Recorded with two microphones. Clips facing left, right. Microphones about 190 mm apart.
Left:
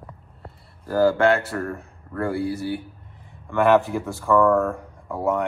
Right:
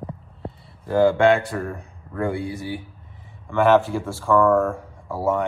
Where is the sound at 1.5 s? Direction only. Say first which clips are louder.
Even; 10° right (ahead or behind).